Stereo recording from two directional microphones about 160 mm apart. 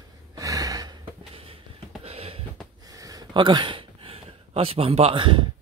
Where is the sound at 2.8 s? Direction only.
25° right (ahead or behind).